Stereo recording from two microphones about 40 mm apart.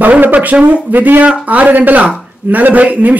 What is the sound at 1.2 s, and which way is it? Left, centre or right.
A man's voice, right.